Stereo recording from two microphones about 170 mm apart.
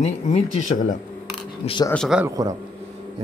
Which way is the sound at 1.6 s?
30° left (ahead or behind).